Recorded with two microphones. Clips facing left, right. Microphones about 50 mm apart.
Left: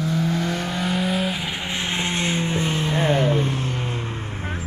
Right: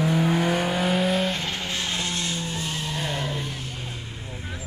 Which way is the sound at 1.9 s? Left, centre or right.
Left.